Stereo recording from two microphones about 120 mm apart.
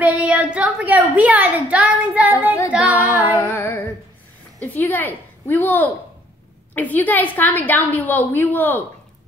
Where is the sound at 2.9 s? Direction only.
20° left (ahead or behind).